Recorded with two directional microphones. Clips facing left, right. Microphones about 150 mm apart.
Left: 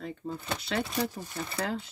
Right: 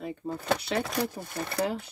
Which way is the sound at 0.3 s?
70° right (ahead or behind).